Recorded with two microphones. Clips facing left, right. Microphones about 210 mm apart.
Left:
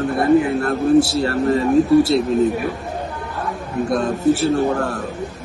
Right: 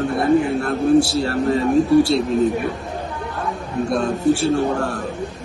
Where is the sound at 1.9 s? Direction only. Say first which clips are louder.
Even; centre (ahead or behind).